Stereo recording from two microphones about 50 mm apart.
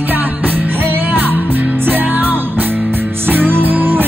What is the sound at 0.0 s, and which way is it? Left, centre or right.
Music, right.